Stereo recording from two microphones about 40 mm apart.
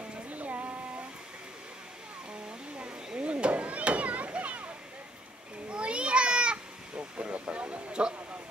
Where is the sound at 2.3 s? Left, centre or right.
Right.